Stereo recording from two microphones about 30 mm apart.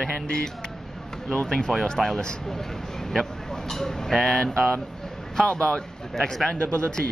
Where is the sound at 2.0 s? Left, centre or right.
Right.